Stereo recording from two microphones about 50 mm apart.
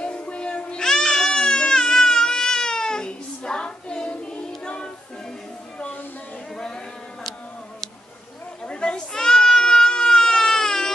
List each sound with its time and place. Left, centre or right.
0.0 s music: left
6.5 s a sound: centre
8.6 s goat: centre